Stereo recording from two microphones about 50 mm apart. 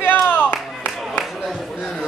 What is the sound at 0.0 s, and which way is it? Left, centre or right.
Clapping, left.